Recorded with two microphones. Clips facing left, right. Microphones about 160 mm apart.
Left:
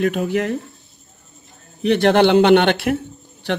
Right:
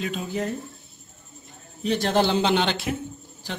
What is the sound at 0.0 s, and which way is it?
Speech, 65° left (ahead or behind).